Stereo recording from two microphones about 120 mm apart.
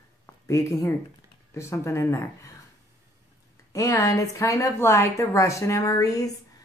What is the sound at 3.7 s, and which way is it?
A woman's voice, 25° left (ahead or behind).